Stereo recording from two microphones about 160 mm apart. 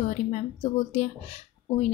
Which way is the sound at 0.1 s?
45° left (ahead or behind).